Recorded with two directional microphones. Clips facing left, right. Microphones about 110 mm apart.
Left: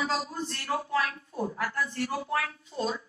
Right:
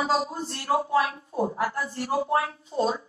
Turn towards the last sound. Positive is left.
turn(degrees=-30)  # may be behind; listen again after turning